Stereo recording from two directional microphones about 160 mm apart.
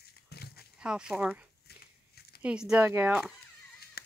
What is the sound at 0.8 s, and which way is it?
Speech, 5° right (ahead or behind).